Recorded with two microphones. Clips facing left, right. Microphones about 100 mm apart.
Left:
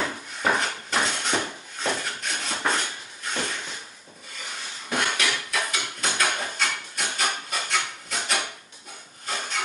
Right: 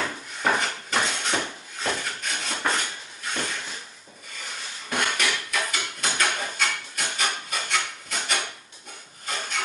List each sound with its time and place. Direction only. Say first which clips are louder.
0.4 s dishes: even; centre (ahead or behind)
4.8 s dishes: even; centre (ahead or behind)
9.2 s wood: left 1 dB; centre (ahead or behind)